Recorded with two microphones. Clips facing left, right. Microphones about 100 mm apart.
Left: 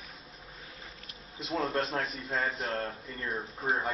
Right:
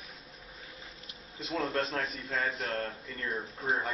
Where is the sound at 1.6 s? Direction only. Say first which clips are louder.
Left 1 dB; 30° left (ahead or behind).